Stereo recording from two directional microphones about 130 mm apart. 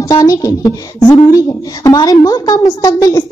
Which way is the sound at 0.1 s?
25° left (ahead or behind).